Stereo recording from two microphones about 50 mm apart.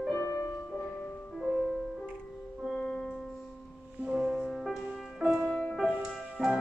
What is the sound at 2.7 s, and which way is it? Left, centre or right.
Music, centre.